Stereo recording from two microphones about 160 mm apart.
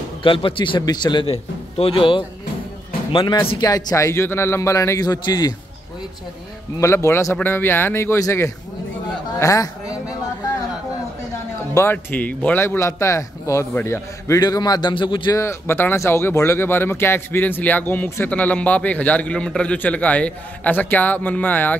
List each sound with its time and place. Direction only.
0.2 s a man's voice: 30° left (ahead or behind)
6.8 s a man's voice: 15° left (ahead or behind)
11.7 s speech: 15° left (ahead or behind); by 15.4 s 30° left (ahead or behind)
15.4 s speech: 15° left (ahead or behind)